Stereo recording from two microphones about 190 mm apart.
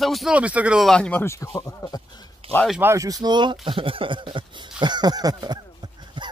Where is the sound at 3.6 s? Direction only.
30° right (ahead or behind).